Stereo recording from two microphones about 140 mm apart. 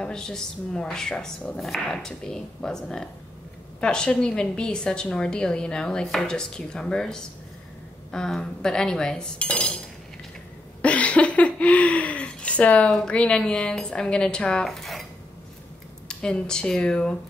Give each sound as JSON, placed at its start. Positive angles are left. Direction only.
{"t": 0.0, "sound": "a woman's voice", "side_deg": 5}
{"t": 10.8, "sound": "laughter", "side_deg": 10}
{"t": 16.1, "sound": "a woman's voice", "side_deg": 5}